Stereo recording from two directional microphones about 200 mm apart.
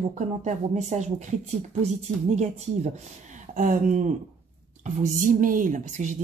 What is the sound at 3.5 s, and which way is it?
Speech, 40° right (ahead or behind).